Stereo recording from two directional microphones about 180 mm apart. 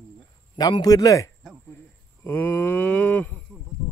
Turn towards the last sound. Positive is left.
turn(degrees=10)  # may be behind; listen again after turning